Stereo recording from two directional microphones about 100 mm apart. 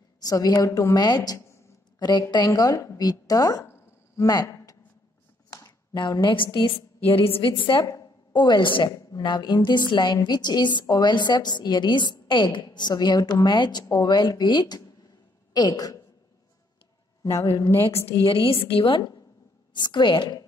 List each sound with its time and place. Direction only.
0.2 s a woman's voice: 40° left (ahead or behind)
0.7 s speech: 30° left (ahead or behind)
0.9 s a woman's voice: 45° left (ahead or behind); by 1.7 s 30° left (ahead or behind)
2.0 s a woman's voice: 45° left (ahead or behind)
3.6 s a sound: 25° left (ahead or behind)
4.3 s a man's voice: 40° left (ahead or behind)
5.9 s a woman's voice: 50° left (ahead or behind)
8.3 s a woman's voice: 50° left (ahead or behind)
17.2 s a man's voice: 30° left (ahead or behind)
18.2 s a woman's voice: 65° left (ahead or behind); by 20.4 s 50° left (ahead or behind)